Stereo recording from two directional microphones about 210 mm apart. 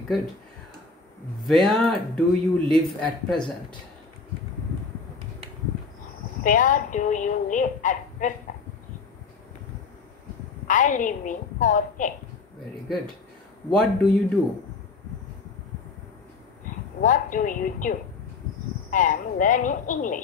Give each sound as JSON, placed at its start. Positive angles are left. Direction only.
{"t": 1.4, "sound": "speech", "side_deg": 0}
{"t": 6.4, "sound": "a woman's voice", "side_deg": 40}
{"t": 10.7, "sound": "a woman's voice", "side_deg": 35}
{"t": 13.7, "sound": "speech", "side_deg": 0}
{"t": 17.0, "sound": "a woman's voice", "side_deg": 40}